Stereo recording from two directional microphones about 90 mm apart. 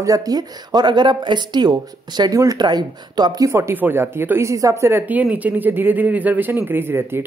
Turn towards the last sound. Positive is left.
turn(degrees=-25)  # may be behind; listen again after turning